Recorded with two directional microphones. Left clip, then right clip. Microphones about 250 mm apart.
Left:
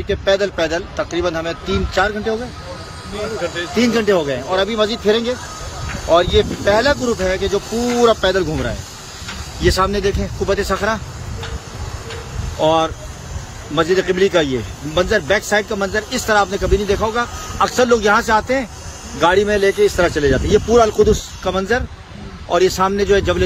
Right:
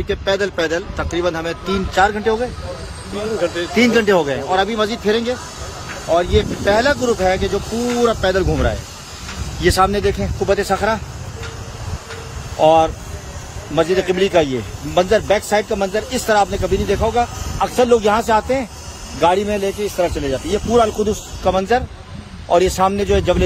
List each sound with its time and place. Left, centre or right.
0.1 s speech: centre
3.3 s speech: right
3.7 s speech: centre
12.6 s speech: centre